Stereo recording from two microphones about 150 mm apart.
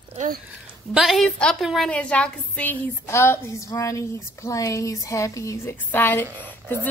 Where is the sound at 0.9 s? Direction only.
Centre (ahead or behind).